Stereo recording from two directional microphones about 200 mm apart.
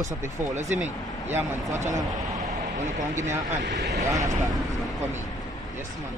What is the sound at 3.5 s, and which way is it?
Speech, 40° right (ahead or behind).